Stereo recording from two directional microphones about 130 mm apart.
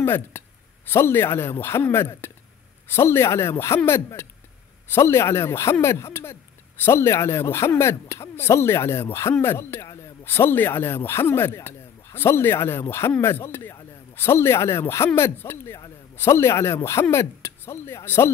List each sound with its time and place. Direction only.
0.0 s a man's voice: 15° left (ahead or behind)